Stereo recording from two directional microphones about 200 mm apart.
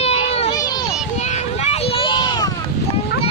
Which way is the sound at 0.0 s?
30° left (ahead or behind).